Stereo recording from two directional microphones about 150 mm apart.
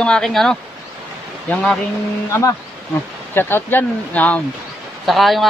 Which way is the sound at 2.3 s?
20° left (ahead or behind).